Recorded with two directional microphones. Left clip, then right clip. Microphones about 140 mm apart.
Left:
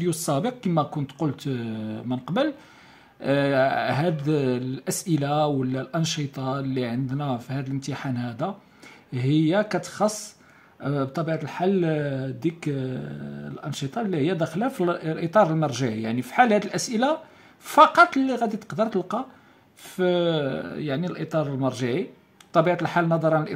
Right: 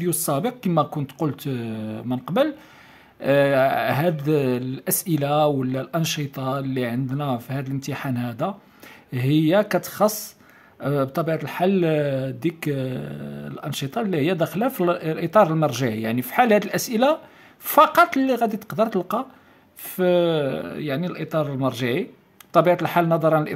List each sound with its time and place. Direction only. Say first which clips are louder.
0.0 s speech: right 2 dB; 15° right (ahead or behind)